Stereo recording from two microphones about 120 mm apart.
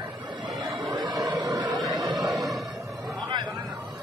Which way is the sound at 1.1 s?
30° right (ahead or behind).